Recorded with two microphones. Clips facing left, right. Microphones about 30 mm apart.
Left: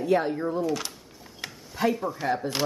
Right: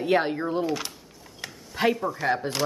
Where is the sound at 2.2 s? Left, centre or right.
Right.